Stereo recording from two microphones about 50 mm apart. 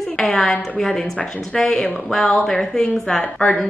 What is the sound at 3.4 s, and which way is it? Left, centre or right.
Speech, left.